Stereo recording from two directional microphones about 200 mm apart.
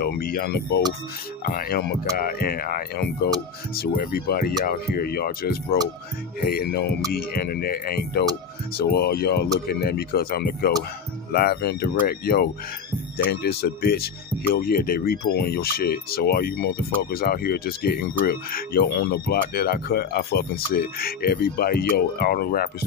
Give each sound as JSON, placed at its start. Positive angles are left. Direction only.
{"t": 0.0, "sound": "speech", "side_deg": 45}